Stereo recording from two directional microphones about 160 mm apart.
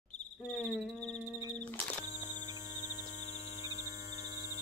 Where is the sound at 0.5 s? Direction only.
Centre (ahead or behind).